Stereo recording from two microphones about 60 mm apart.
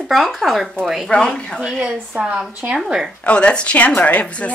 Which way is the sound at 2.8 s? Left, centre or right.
Centre.